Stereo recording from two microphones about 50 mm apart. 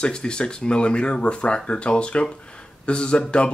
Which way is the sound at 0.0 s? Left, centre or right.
Centre.